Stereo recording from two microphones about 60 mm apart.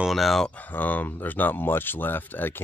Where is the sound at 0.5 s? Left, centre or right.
Left.